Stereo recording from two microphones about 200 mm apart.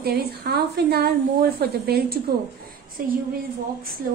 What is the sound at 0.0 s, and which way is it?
A woman's voice, 50° right (ahead or behind).